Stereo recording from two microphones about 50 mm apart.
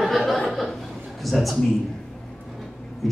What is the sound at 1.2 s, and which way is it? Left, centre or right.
Speech, centre.